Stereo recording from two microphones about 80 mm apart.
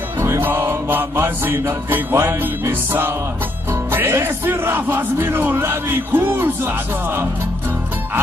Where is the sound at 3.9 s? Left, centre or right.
Right.